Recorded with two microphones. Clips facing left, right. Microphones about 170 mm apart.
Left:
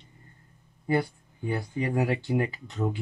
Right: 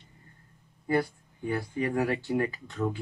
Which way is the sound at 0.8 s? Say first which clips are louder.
Left 1 dB; 20° left (ahead or behind).